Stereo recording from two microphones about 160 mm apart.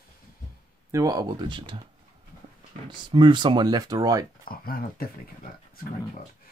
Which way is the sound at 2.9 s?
30° right (ahead or behind).